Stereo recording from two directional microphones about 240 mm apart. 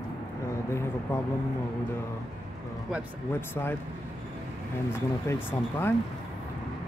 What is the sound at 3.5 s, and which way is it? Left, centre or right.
Speech, centre.